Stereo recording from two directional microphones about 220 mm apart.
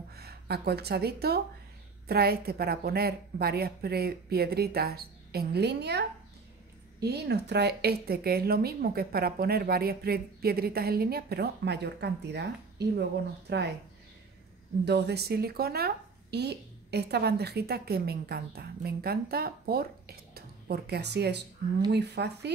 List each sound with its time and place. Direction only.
0.1 s speech: 45° right (ahead or behind)
14.9 s speech: 50° right (ahead or behind)